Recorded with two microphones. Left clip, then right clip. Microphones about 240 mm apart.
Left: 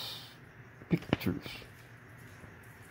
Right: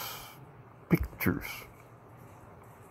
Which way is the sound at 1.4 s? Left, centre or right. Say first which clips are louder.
Right 4 dB; right.